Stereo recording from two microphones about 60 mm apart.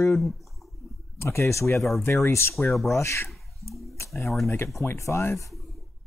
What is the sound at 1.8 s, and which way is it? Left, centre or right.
Speech, centre.